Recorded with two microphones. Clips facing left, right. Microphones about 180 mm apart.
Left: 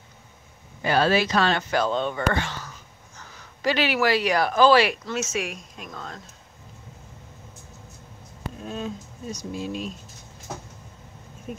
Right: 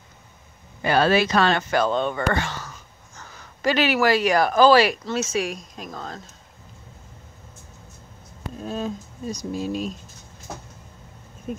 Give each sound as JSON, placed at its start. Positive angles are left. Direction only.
{"t": 0.8, "sound": "speech", "side_deg": -60}
{"t": 8.6, "sound": "speech", "side_deg": -35}